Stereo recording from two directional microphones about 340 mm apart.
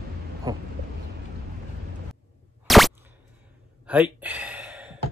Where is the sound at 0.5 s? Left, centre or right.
Centre.